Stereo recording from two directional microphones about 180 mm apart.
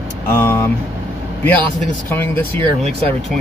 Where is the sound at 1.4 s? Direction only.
10° left (ahead or behind).